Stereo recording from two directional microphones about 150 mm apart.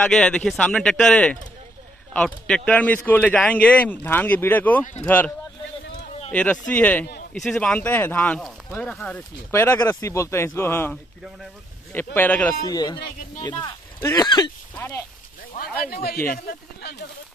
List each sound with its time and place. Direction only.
0.0 s speech: 5° left (ahead or behind)
6.3 s speech: 5° left (ahead or behind)
9.5 s speech: 15° left (ahead or behind)
11.9 s speech: 15° left (ahead or behind)
12.6 s speech: 25° left (ahead or behind)
14.8 s speech: 15° left (ahead or behind)
15.5 s a sound: 70° left (ahead or behind)
15.9 s speech: 90° left